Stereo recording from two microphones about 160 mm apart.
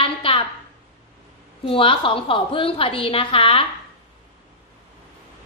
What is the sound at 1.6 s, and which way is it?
A woman's voice, 35° left (ahead or behind).